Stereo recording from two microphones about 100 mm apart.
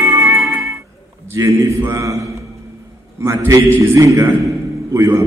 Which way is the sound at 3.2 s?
25° right (ahead or behind).